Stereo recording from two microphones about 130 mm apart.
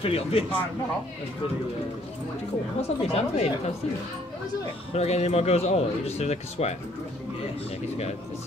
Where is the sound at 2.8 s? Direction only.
50° left (ahead or behind).